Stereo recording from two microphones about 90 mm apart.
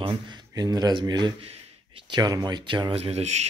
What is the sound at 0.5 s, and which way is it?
Speech, 45° right (ahead or behind).